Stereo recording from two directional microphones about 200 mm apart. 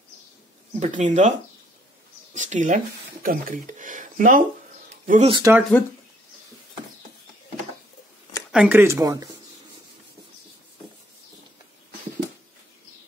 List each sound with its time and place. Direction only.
0.7 s speech: 35° right (ahead or behind)
2.3 s speech: 40° right (ahead or behind)
5.3 s speech: 15° right (ahead or behind)
5.6 s speech: 5° left (ahead or behind)
8.5 s speech: 5° right (ahead or behind)